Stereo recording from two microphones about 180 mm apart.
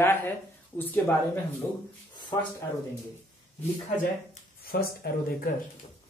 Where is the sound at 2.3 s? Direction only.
20° left (ahead or behind).